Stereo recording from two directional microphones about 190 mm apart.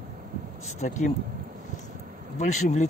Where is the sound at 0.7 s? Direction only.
40° left (ahead or behind).